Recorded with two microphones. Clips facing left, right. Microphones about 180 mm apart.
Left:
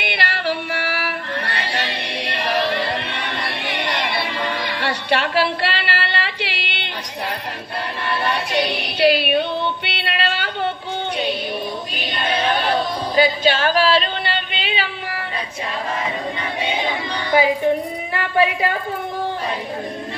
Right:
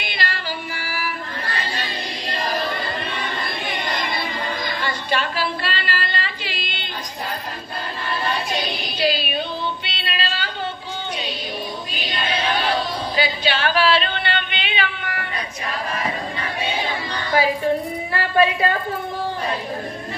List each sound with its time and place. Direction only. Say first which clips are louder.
0.0 s female singing: left 5 dB; 65° left (ahead or behind)
8.1 s female singing: left 2 dB; 70° left (ahead or behind)
9.8 s a sound: left 4 dB; 65° left (ahead or behind)
11.9 s a sound: left 2 dB; 55° left (ahead or behind); by 15.2 s 30° left (ahead or behind)
16.6 s child singing: left 3 dB; 20° left (ahead or behind)
18.1 s a woman's voice: even; 15° left (ahead or behind)